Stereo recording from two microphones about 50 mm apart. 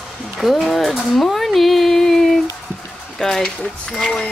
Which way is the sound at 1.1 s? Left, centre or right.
Centre.